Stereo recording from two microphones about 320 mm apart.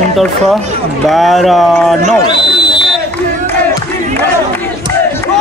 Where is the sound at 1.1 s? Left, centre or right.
Centre.